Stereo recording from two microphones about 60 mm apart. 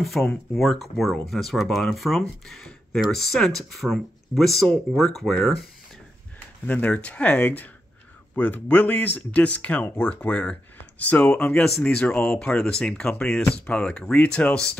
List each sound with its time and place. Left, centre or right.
0.0 s speech: centre
6.6 s speech: left